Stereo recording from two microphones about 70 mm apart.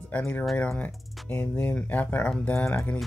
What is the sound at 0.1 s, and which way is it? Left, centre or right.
Speech, left.